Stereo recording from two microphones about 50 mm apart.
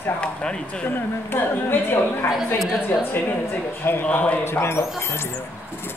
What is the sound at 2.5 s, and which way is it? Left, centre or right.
Speech, centre.